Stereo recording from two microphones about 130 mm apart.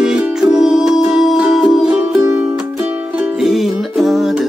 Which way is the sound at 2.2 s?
15° right (ahead or behind).